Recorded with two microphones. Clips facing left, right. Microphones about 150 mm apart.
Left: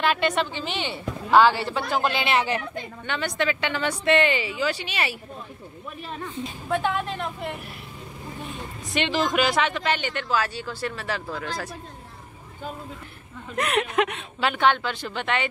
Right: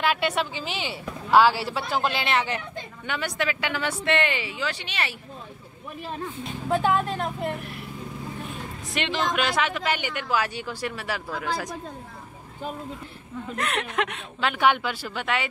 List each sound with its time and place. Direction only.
0.0 s a woman's voice: 5° right (ahead or behind)
6.7 s speech: 40° right (ahead or behind)
8.9 s speech: centre (ahead or behind)
13.6 s a woman's voice: 10° left (ahead or behind)
14.6 s speech: 10° right (ahead or behind)